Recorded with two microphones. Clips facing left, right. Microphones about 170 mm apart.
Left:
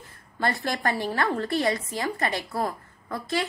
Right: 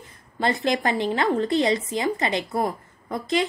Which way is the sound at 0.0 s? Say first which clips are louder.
Right 3 dB; 20° right (ahead or behind).